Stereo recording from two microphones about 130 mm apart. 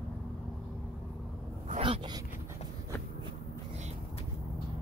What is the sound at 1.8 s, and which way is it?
Speech, 40° right (ahead or behind).